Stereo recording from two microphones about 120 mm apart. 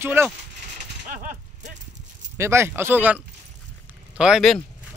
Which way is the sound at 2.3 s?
20° right (ahead or behind).